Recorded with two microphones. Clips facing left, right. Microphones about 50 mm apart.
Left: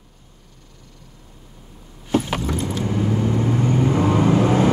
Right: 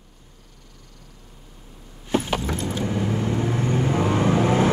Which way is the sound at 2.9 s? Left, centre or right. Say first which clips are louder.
Left 5 dB; centre.